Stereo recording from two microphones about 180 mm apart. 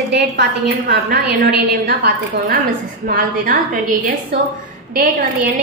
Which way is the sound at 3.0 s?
50° right (ahead or behind).